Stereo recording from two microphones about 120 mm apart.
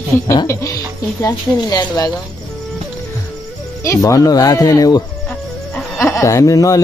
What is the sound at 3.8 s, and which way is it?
Speech, 25° left (ahead or behind).